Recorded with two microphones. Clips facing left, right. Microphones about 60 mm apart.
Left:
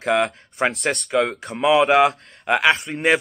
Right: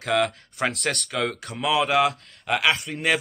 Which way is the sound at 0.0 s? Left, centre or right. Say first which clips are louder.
Left 3 dB; left.